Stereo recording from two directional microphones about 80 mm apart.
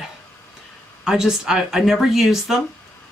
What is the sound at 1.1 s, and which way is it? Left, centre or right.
Speech, centre.